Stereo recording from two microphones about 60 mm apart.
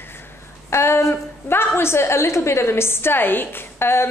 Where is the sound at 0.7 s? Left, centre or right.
Left.